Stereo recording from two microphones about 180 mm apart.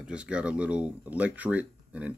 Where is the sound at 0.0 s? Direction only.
5° right (ahead or behind).